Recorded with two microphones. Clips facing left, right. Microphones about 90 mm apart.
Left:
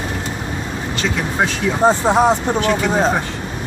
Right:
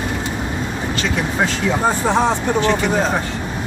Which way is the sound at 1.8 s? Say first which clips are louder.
Left 5 dB; 20° left (ahead or behind).